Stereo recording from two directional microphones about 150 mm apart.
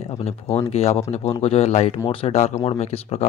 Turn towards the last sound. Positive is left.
turn(degrees=45)  # may be behind; listen again after turning